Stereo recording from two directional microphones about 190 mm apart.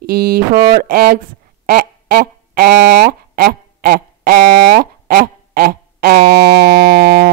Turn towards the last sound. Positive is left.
turn(degrees=-55)  # may be behind; listen again after turning